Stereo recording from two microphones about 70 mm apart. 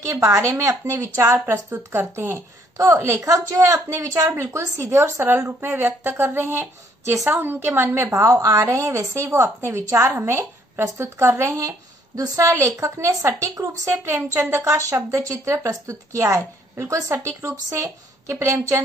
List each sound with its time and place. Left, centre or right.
0.0 s a woman's voice: right
8.3 s a woman's voice: right